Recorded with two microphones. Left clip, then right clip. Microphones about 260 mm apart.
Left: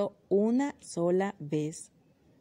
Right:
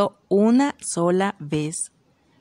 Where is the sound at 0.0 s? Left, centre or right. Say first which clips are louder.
Right 8 dB; right.